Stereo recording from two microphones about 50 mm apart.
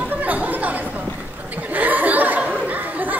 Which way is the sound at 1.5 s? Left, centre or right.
Right.